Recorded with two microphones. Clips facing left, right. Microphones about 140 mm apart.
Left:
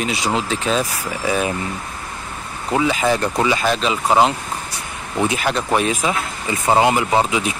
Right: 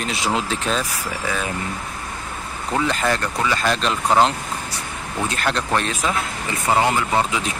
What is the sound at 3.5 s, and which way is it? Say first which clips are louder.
Speech: left 2 dB; 5° left (ahead or behind).